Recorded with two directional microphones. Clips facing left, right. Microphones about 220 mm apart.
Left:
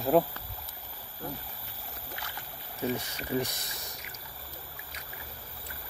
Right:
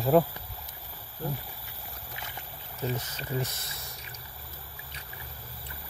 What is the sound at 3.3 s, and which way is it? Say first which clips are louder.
Speech: left 3 dB; 15° left (ahead or behind).